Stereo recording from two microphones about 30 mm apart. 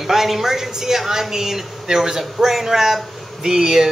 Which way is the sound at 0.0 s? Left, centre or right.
Centre.